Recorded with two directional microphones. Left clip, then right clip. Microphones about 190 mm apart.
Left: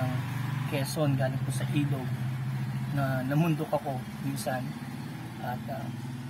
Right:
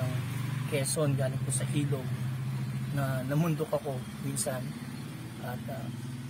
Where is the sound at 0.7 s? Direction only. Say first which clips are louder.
Even; 20° right (ahead or behind).